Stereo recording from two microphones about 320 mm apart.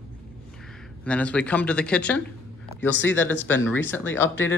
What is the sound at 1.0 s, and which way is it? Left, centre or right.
Speech, centre.